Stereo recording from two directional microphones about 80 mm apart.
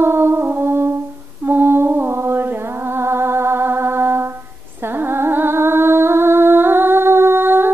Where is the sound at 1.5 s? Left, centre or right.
Right.